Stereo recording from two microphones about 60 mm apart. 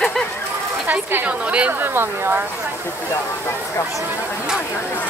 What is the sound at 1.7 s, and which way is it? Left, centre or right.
Speech, right.